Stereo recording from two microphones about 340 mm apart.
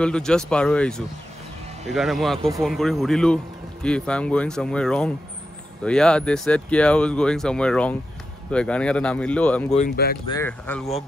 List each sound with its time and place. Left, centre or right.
0.0 s speech: centre
9.8 s speech: left
10.2 s speech: centre